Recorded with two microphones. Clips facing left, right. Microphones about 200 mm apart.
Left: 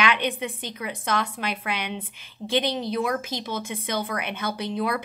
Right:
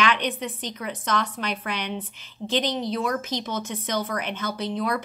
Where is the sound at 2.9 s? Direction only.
10° left (ahead or behind).